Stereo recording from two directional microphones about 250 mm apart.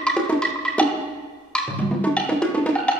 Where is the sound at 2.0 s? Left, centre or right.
Centre.